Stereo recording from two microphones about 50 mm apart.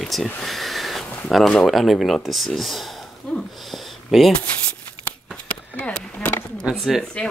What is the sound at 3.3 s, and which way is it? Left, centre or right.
Speech, centre.